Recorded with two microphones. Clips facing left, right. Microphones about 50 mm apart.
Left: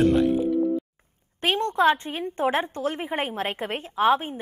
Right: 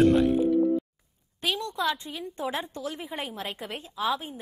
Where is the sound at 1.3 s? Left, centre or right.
Left.